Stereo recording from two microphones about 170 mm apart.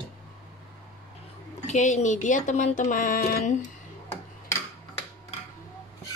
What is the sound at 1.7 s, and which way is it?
A woman's voice, 45° left (ahead or behind).